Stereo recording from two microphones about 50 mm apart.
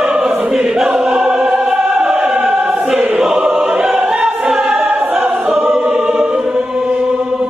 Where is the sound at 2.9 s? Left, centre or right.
Right.